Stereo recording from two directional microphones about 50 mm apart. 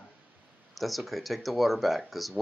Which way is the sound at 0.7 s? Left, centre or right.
Centre.